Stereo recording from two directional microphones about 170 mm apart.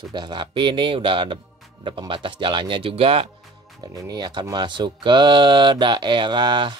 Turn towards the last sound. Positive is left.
turn(degrees=-25)  # may be behind; listen again after turning